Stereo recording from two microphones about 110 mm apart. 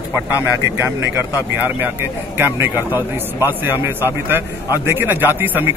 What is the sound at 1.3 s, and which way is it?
A man's voice, 15° right (ahead or behind).